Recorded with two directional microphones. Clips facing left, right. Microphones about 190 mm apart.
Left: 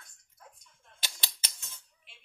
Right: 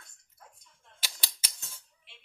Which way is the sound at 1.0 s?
10° right (ahead or behind).